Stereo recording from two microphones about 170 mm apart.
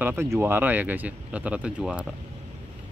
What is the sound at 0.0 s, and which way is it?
Speech, 15° right (ahead or behind).